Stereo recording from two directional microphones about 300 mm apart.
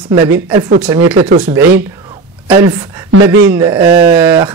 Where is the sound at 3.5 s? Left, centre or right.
Centre.